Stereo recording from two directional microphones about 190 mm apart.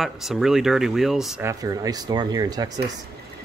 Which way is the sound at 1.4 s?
20° right (ahead or behind).